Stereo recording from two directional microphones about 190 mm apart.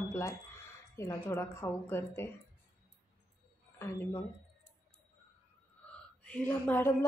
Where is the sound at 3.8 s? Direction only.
10° left (ahead or behind).